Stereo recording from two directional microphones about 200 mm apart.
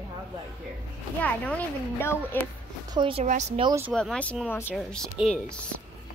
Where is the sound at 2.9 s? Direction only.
25° right (ahead or behind).